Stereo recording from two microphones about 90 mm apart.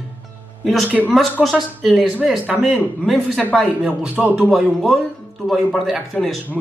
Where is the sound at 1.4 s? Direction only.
Centre (ahead or behind).